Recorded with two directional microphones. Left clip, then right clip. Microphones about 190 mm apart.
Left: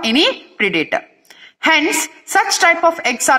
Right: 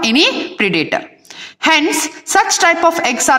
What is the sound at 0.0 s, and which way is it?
A woman's voice, 25° right (ahead or behind).